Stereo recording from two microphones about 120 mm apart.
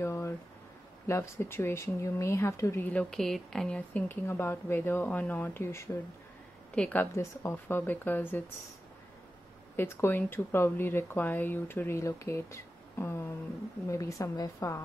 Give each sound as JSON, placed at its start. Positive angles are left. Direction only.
{"t": 0.0, "sound": "a sound", "side_deg": 25}
{"t": 1.0, "sound": "speech", "side_deg": 25}
{"t": 2.9, "sound": "speech", "side_deg": 5}
{"t": 6.7, "sound": "speech", "side_deg": 10}
{"t": 9.8, "sound": "speech", "side_deg": 20}